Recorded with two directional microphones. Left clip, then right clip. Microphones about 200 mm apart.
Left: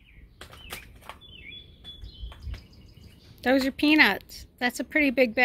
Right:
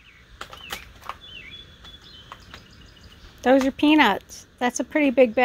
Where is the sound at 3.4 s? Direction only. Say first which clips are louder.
Right 5 dB; 10° right (ahead or behind).